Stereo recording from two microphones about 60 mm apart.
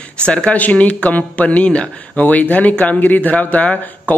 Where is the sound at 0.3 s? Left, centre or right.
Left.